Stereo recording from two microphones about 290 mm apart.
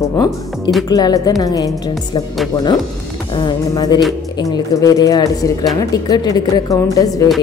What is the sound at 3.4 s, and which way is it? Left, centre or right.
Speech, centre.